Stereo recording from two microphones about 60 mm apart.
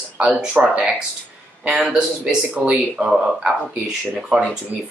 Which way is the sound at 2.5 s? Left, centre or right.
Centre.